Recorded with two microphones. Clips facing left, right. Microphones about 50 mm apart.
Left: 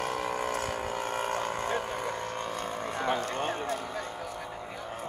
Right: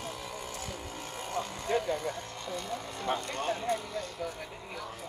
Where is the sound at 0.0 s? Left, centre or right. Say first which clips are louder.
Left 9 dB; left.